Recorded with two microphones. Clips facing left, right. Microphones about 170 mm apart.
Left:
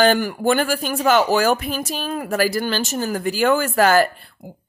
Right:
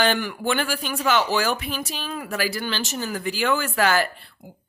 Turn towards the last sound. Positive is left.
turn(degrees=45)  # may be behind; listen again after turning